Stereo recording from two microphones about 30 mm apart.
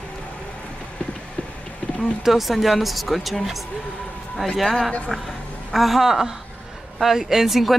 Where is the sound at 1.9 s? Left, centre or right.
Left.